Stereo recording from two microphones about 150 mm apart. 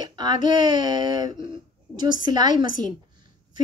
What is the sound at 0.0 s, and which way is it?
A woman's voice, 30° right (ahead or behind).